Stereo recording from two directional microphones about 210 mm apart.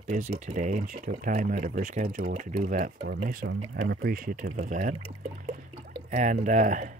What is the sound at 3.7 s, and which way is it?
Speech, 50° right (ahead or behind).